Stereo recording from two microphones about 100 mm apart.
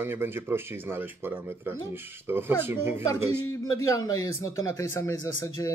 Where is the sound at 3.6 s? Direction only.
35° left (ahead or behind).